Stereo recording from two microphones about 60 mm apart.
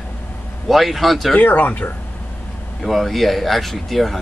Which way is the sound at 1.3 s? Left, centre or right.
Left.